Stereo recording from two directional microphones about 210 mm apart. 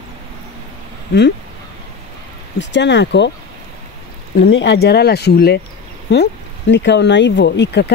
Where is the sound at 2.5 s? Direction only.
55° left (ahead or behind).